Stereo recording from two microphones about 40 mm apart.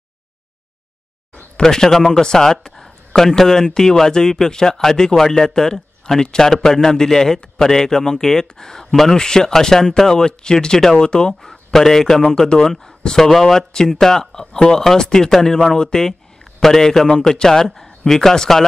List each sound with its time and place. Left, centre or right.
1.6 s speech: centre
11.7 s a man's voice: centre